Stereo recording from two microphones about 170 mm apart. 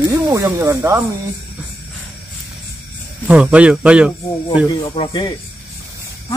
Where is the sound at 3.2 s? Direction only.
5° right (ahead or behind).